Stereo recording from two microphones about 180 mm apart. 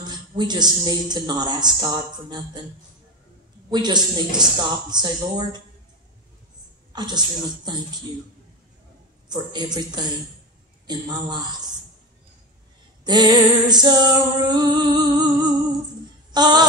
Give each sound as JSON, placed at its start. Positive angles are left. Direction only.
{"t": 0.1, "sound": "speech", "side_deg": -25}
{"t": 3.7, "sound": "speech", "side_deg": -25}
{"t": 6.9, "sound": "speech", "side_deg": -25}
{"t": 9.3, "sound": "speech", "side_deg": -25}
{"t": 13.0, "sound": "speech", "side_deg": -25}
{"t": 16.3, "sound": "speech", "side_deg": -25}